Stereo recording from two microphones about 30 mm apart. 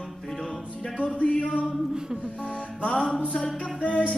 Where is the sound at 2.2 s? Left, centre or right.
Left.